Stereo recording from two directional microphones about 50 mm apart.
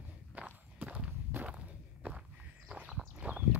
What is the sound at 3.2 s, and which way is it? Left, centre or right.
Walk, right.